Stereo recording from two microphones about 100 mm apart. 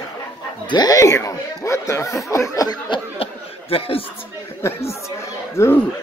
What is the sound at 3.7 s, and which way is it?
Speech, 70° left (ahead or behind).